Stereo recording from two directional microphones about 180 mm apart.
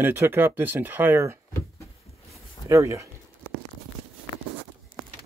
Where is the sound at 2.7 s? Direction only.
15° right (ahead or behind).